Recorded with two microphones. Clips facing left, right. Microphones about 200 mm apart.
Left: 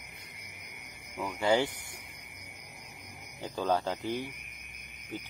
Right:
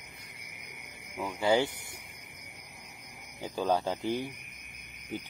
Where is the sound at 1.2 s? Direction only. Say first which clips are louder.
Right 1 dB; 10° right (ahead or behind).